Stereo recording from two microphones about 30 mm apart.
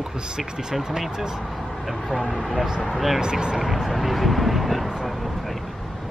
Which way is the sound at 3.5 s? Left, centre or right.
Centre.